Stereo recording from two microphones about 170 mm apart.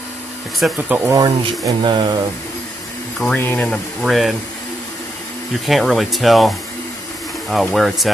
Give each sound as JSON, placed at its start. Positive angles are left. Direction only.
{"t": 0.6, "sound": "speech", "side_deg": -10}
{"t": 1.1, "sound": "speech", "side_deg": -20}
{"t": 3.2, "sound": "speech", "side_deg": 10}
{"t": 5.7, "sound": "speech", "side_deg": 0}